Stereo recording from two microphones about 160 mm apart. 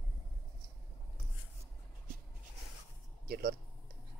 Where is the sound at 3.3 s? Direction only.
70° right (ahead or behind).